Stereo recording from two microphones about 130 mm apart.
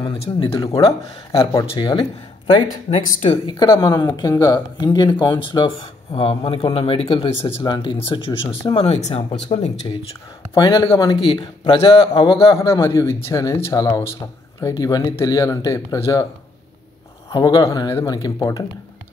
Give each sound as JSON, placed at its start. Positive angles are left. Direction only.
{"t": 0.2, "sound": "speech", "side_deg": 45}
{"t": 1.7, "sound": "speech", "side_deg": 40}
{"t": 9.5, "sound": "speech", "side_deg": 45}
{"t": 10.5, "sound": "speech", "side_deg": 30}
{"t": 12.8, "sound": "speech", "side_deg": 20}
{"t": 17.3, "sound": "speech", "side_deg": 25}